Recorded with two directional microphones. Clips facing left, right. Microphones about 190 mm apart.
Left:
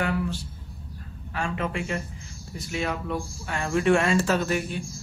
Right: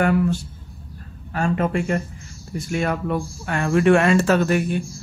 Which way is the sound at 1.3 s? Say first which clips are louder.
Right 8 dB; 45° right (ahead or behind).